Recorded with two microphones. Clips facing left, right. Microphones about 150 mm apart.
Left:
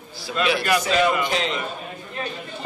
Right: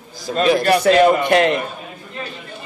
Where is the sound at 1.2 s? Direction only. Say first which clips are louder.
Right 9 dB; 60° right (ahead or behind).